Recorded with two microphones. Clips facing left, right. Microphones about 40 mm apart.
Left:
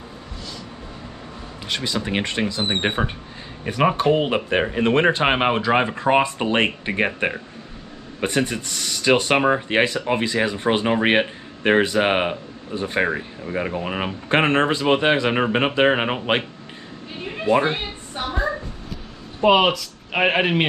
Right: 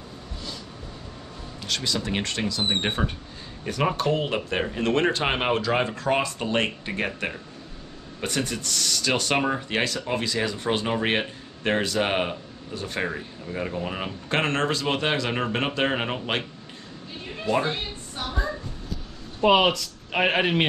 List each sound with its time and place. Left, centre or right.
1.7 s speech: left
17.2 s a sound: left
19.4 s speech: centre